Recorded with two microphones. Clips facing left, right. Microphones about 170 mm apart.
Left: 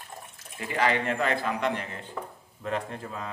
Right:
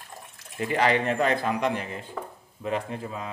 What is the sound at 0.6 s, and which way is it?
A man's voice, 20° right (ahead or behind).